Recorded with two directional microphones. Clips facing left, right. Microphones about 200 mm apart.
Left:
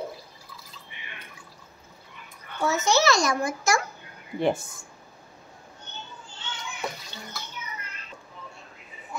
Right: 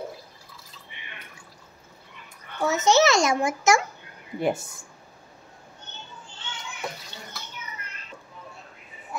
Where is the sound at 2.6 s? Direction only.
20° right (ahead or behind).